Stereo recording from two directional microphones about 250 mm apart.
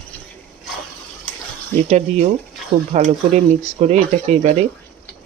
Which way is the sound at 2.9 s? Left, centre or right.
Right.